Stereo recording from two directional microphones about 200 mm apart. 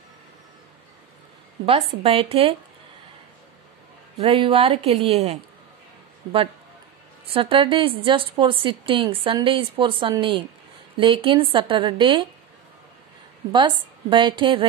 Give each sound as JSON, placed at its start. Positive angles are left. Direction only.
{"t": 2.0, "sound": "a woman's voice", "side_deg": -30}
{"t": 4.2, "sound": "a woman's voice", "side_deg": -30}
{"t": 7.3, "sound": "a woman's voice", "side_deg": -25}
{"t": 13.5, "sound": "a woman's voice", "side_deg": -25}